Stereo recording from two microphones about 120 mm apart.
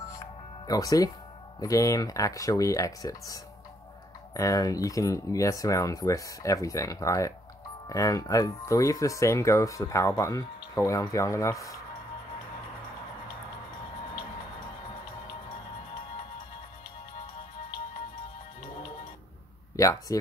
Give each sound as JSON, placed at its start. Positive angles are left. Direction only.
{"t": 0.7, "sound": "speech", "side_deg": 30}
{"t": 19.8, "sound": "speech", "side_deg": 25}